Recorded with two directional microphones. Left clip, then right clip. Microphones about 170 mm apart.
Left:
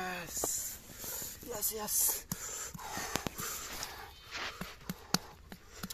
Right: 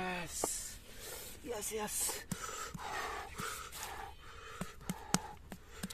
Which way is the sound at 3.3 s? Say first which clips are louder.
Left 1 dB; 5° right (ahead or behind).